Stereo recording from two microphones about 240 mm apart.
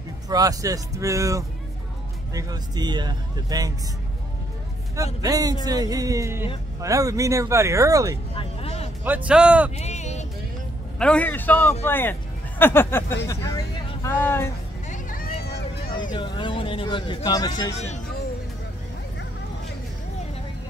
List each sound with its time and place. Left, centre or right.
0.3 s a man's voice: centre
4.9 s a man's voice: centre
8.4 s vehicle: left
9.0 s a man's voice: centre
9.8 s a sound: left
11.0 s a man's voice: centre
14.9 s music: left
15.9 s speech: centre